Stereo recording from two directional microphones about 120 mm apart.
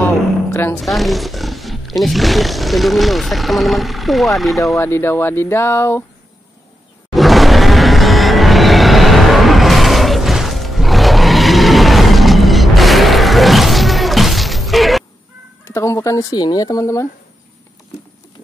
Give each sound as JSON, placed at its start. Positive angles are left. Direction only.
{"t": 0.0, "sound": "a sound", "side_deg": 15}
{"t": 0.7, "sound": "speech", "side_deg": 0}
{"t": 4.7, "sound": "speech", "side_deg": 20}
{"t": 7.2, "sound": "music", "side_deg": 0}
{"t": 15.7, "sound": "speech", "side_deg": 25}